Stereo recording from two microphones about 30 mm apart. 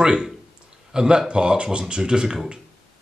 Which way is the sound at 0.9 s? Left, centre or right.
Right.